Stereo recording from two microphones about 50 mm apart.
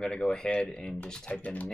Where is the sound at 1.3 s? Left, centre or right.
Left.